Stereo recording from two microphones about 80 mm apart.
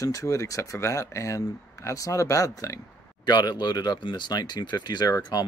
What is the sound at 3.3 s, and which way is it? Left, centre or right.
Speech, left.